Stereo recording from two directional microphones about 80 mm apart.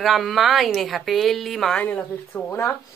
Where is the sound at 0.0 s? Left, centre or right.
Centre.